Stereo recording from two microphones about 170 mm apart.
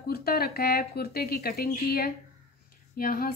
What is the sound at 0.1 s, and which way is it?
Speech, 65° left (ahead or behind).